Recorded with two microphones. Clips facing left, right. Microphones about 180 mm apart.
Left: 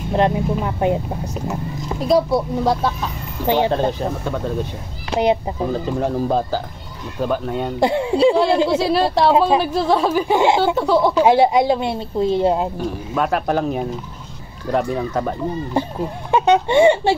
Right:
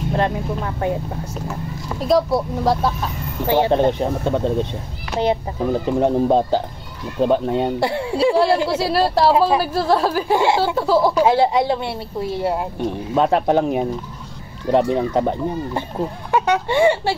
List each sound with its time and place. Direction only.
0.1 s a woman's voice: 20° left (ahead or behind)
2.0 s speech: centre (ahead or behind)
3.4 s speech: 15° left (ahead or behind)
3.7 s speech: 20° right (ahead or behind)
5.1 s speech: 15° left (ahead or behind)
5.7 s speech: 20° right (ahead or behind)
7.8 s a woman's voice: 20° left (ahead or behind)
8.7 s speech: 5° right (ahead or behind)
10.3 s a woman's voice: 20° left (ahead or behind)
10.8 s speech: 5° right (ahead or behind)
11.1 s a woman's voice: 15° left (ahead or behind)
12.7 s speech: 25° right (ahead or behind)
16.3 s speech: 25° left (ahead or behind)